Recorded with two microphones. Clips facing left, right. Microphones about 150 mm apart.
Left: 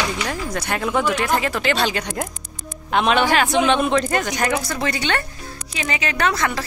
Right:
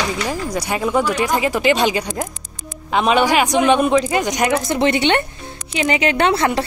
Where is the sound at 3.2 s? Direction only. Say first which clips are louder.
Right 3 dB; 15° right (ahead or behind).